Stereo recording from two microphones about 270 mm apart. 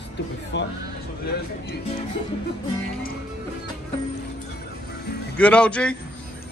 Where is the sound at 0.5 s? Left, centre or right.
Left.